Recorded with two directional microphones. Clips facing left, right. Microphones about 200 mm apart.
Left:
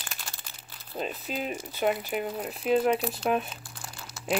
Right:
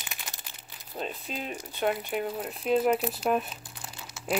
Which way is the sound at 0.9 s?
5° left (ahead or behind).